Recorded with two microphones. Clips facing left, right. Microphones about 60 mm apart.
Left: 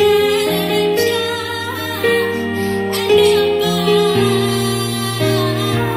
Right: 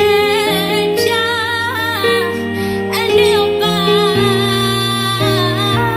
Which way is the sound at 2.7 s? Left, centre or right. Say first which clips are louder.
Even; right.